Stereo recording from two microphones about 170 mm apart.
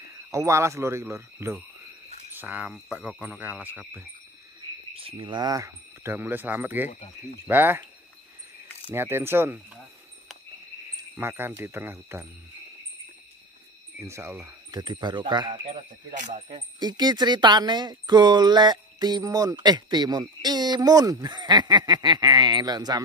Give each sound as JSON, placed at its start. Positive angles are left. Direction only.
{"t": 0.3, "sound": "speech", "side_deg": -20}
{"t": 4.9, "sound": "speech", "side_deg": -30}
{"t": 6.9, "sound": "speech", "side_deg": 50}
{"t": 7.4, "sound": "speech", "side_deg": -10}
{"t": 8.9, "sound": "speech", "side_deg": -15}
{"t": 11.1, "sound": "speech", "side_deg": -10}
{"t": 13.9, "sound": "speech", "side_deg": -15}
{"t": 16.2, "sound": "speech", "side_deg": -40}
{"t": 16.4, "sound": "speech", "side_deg": -25}